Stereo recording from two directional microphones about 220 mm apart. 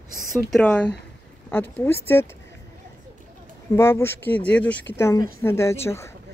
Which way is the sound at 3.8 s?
10° left (ahead or behind).